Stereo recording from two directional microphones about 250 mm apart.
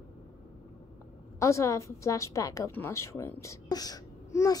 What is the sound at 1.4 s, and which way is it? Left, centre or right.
A woman's voice, centre.